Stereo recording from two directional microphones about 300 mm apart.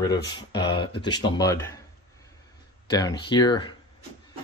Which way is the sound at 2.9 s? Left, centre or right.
Centre.